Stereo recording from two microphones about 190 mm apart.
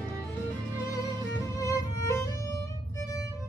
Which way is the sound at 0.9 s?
15° left (ahead or behind).